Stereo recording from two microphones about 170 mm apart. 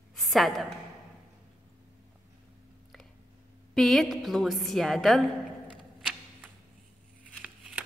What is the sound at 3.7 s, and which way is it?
A woman's voice, 5° left (ahead or behind).